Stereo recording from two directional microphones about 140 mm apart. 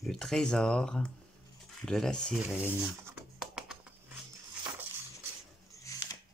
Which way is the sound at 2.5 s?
10° right (ahead or behind).